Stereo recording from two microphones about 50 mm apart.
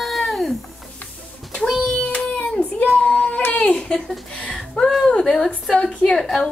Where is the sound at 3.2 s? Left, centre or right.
Left.